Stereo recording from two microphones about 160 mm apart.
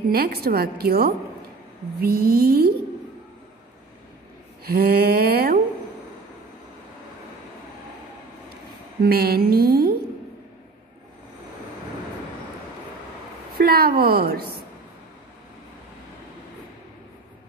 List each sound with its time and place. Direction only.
0.1 s a woman's voice: 75° right (ahead or behind)
4.6 s a woman's voice: 70° right (ahead or behind)
9.0 s a woman's voice: 75° right (ahead or behind)
13.6 s a woman's voice: 70° right (ahead or behind)